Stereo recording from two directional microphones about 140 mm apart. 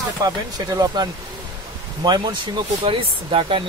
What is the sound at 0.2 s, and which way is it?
Speech, 25° right (ahead or behind).